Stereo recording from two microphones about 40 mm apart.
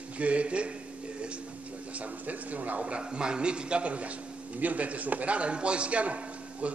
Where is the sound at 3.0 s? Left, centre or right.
Right.